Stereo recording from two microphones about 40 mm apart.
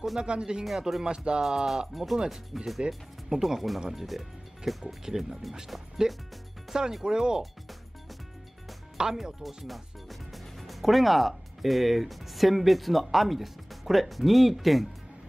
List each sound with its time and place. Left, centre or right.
0.2 s speech: right
0.7 s speech: centre
1.0 s speech: right
1.4 s speech: centre
8.9 s speech: centre